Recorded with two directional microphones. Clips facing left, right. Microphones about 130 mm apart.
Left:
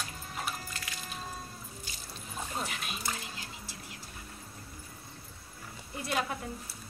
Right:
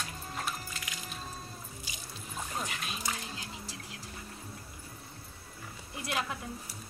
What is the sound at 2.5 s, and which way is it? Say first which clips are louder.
Speech: even; 5° left (ahead or behind).